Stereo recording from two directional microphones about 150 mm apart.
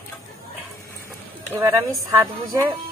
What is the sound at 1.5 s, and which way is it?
A woman's voice, 20° right (ahead or behind).